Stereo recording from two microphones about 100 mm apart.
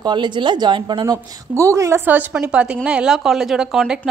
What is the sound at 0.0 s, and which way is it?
A woman's voice, 50° right (ahead or behind).